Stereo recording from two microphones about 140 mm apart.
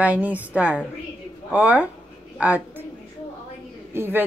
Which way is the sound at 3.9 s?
15° right (ahead or behind).